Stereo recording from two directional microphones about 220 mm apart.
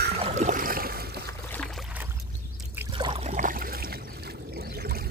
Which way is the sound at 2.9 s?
20° right (ahead or behind).